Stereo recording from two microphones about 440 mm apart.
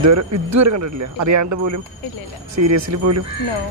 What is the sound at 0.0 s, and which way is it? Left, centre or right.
A man's voice, right.